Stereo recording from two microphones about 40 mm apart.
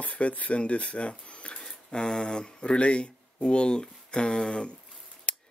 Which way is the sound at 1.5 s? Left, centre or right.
Centre.